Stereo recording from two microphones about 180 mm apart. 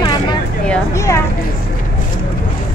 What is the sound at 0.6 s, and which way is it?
Speech, 10° left (ahead or behind).